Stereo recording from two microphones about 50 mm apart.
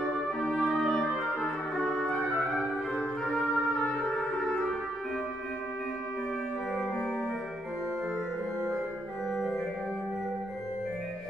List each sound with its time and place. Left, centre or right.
0.4 s music: left
0.7 s music: centre
1.4 s organ: centre
2.1 s music: centre
3.7 s music: centre
6.7 s organ: centre
9.3 s organ: centre